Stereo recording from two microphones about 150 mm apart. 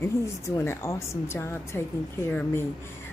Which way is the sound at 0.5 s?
15° left (ahead or behind).